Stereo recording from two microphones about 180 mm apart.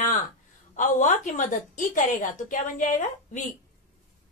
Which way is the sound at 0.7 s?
45° left (ahead or behind).